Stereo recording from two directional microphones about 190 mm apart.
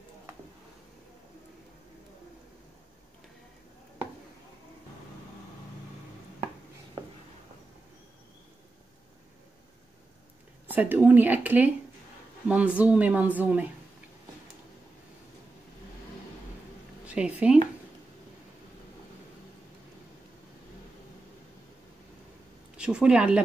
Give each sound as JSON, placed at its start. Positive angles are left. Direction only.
{"t": 7.0, "sound": "a sound", "side_deg": -25}
{"t": 10.7, "sound": "speech", "side_deg": -10}
{"t": 17.0, "sound": "speech", "side_deg": -5}
{"t": 22.8, "sound": "speech", "side_deg": -5}